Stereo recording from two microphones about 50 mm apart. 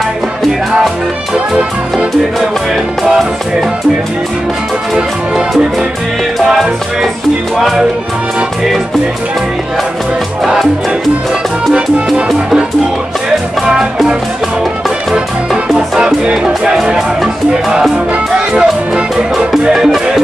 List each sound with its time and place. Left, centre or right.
3.0 s music: centre
6.5 s music: centre
15.7 s music: centre
17.5 s music: centre